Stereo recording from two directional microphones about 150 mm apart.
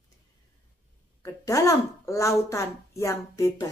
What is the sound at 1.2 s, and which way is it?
Speech, 20° left (ahead or behind).